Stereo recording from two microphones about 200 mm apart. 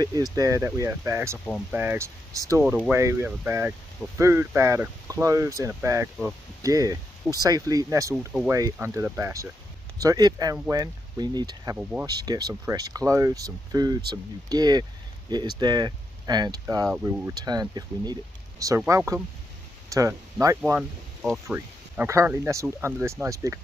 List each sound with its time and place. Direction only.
0.0 s speech: 20° right (ahead or behind)
1.4 s speech: centre (ahead or behind)
1.8 s speech: 10° right (ahead or behind)
11.7 s speech: 5° right (ahead or behind)
12.1 s speech: 20° right (ahead or behind)
16.8 s speech: 5° right (ahead or behind)
17.3 s speech: 20° right (ahead or behind)
20.6 s speech: 5° right (ahead or behind)